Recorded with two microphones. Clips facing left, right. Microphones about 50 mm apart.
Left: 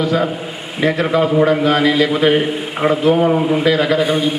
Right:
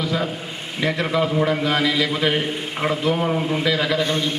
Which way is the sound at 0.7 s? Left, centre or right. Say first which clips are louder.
Left 6 dB; centre.